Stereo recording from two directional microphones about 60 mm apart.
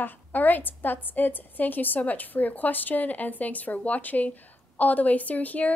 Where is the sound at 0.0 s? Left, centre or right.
Left.